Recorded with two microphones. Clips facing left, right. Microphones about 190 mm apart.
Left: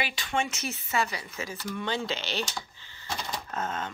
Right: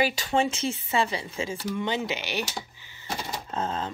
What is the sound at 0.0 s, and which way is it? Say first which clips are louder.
Speech: right 6 dB; 40° right (ahead or behind).